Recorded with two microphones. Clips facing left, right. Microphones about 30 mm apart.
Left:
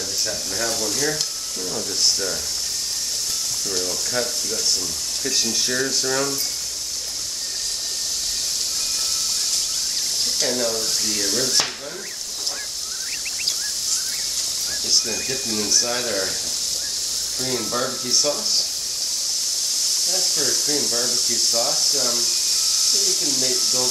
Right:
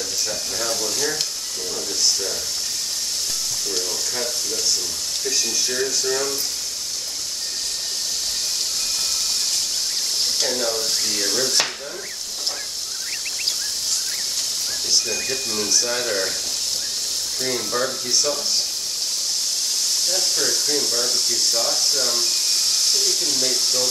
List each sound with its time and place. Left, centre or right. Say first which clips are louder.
0.7 s frying: left 1 dB; centre
5.2 s speech: left 1 dB; centre
10.4 s speech: left 2 dB; centre
14.9 s speech: even; centre
17.5 s speech: right 1 dB; centre
20.1 s speech: right 1 dB; centre